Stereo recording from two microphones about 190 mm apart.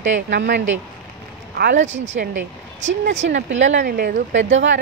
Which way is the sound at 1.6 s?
45° right (ahead or behind).